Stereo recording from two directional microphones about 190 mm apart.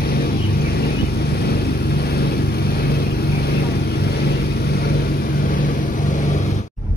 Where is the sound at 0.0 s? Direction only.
55° left (ahead or behind).